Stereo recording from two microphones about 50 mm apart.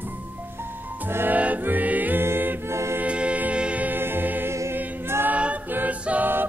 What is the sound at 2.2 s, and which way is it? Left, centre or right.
Music, right.